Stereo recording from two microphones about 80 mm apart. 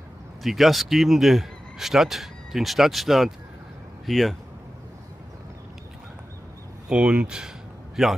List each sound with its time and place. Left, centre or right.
0.4 s speech: centre
6.9 s speech: centre